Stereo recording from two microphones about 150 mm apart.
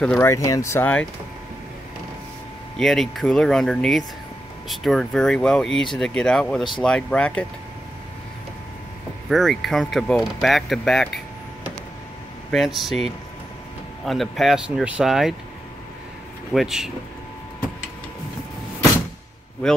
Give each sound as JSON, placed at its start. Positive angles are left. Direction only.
{"t": 0.2, "sound": "speech", "side_deg": 20}
{"t": 2.8, "sound": "speech", "side_deg": 0}
{"t": 9.3, "sound": "speech", "side_deg": 0}
{"t": 12.4, "sound": "speech", "side_deg": 0}
{"t": 14.0, "sound": "speech", "side_deg": 0}
{"t": 16.5, "sound": "speech", "side_deg": 0}